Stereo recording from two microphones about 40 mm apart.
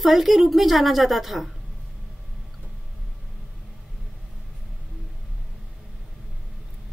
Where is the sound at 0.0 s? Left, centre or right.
Centre.